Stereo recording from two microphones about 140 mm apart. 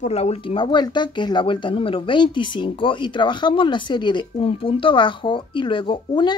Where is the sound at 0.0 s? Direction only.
50° left (ahead or behind).